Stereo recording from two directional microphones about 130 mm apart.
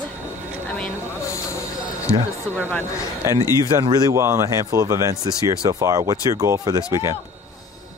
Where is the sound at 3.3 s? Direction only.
30° right (ahead or behind).